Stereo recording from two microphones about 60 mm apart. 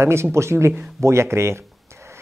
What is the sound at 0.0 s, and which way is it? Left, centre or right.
Speech, right.